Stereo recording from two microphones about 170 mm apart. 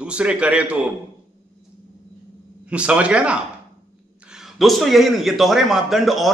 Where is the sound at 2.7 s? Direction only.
5° right (ahead or behind).